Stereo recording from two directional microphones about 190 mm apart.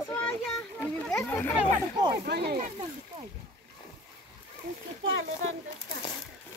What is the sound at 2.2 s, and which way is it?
Speech, 60° right (ahead or behind).